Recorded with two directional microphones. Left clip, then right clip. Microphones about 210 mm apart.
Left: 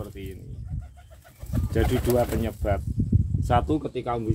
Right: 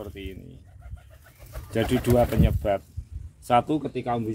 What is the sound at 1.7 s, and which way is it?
Speech, 15° right (ahead or behind).